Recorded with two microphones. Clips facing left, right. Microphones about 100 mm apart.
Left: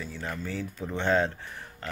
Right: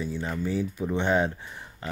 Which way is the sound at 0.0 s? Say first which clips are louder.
Right 5 dB; 15° right (ahead or behind).